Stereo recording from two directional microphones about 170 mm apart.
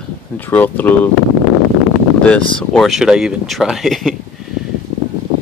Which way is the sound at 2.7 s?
Centre (ahead or behind).